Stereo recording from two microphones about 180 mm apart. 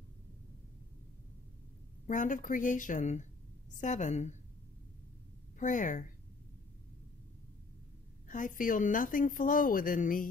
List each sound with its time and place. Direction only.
2.0 s a woman's voice: 45° left (ahead or behind)
5.6 s a woman's voice: 45° left (ahead or behind)
8.3 s a woman's voice: 45° left (ahead or behind)